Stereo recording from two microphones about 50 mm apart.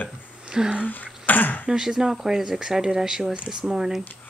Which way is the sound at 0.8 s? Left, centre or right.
Left.